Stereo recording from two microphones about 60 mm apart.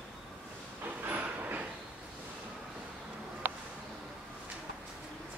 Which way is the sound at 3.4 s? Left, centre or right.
Right.